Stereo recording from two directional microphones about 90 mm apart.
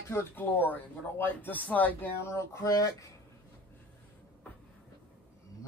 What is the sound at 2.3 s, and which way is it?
Speech, 35° left (ahead or behind).